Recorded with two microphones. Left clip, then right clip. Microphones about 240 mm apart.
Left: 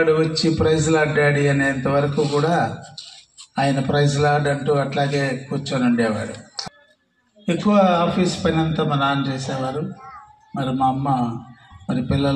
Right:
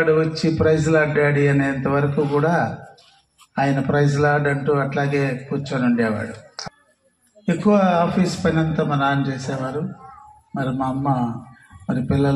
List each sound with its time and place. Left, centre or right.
0.0 s a man's voice: right
7.6 s a man's voice: right
10.5 s a man's voice: right